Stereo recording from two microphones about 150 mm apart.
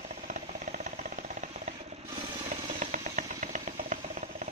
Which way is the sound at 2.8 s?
55° right (ahead or behind).